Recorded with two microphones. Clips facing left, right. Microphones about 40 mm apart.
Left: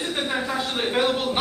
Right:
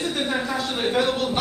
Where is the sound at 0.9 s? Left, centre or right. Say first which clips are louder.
Even; left.